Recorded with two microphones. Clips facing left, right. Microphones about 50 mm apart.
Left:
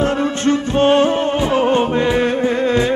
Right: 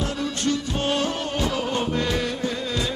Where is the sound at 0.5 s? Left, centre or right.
Left.